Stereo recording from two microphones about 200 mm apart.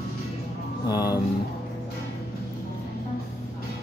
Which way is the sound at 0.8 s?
20° left (ahead or behind).